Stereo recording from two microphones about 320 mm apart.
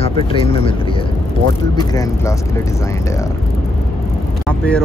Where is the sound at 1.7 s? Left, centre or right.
Centre.